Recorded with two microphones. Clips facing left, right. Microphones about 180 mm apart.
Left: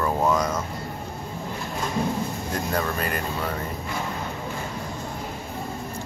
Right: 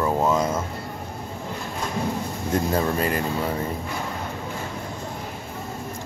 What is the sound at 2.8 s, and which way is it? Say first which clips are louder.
Speech: right 4 dB; 25° right (ahead or behind).